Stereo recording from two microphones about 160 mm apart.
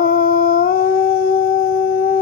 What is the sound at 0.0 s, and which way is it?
Howl, 65° left (ahead or behind).